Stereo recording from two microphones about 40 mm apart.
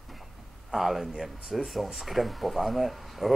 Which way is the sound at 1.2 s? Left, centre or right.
Centre.